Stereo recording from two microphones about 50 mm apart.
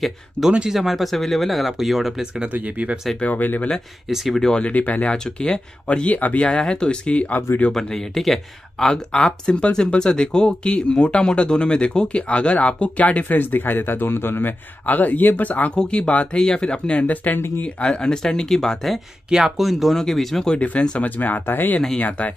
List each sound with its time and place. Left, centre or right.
0.7 s speech: centre
2.5 s speech: right
3.2 s speech: left
4.1 s speech: centre
4.4 s speech: centre
4.6 s speech: left
5.1 s speech: centre
6.4 s speech: centre
7.7 s speech: centre; by 14.5 s left
14.9 s speech: left
15.7 s speech: left
17.0 s speech: left; by 18.9 s centre
19.3 s speech: centre
21.0 s speech: left